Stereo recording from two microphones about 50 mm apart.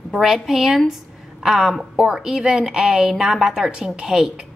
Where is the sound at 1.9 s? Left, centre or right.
Centre.